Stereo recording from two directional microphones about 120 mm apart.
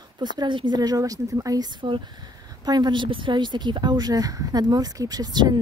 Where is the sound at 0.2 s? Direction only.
40° right (ahead or behind).